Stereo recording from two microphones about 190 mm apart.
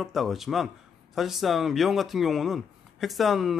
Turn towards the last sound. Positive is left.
turn(degrees=0)  # may be behind; listen again after turning